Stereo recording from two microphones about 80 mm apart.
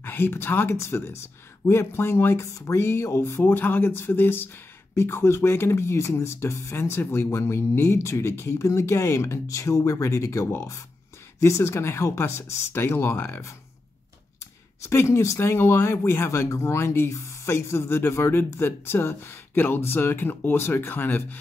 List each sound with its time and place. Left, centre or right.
0.0 s speech: left
14.9 s speech: left